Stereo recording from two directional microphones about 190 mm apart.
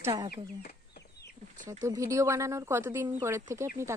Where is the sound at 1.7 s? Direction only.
15° right (ahead or behind).